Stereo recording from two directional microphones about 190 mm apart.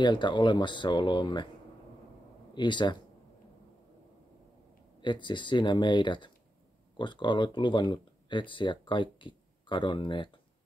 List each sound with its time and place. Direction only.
0.0 s speech: 25° left (ahead or behind)
2.5 s speech: 25° left (ahead or behind)
5.0 s speech: 25° left (ahead or behind)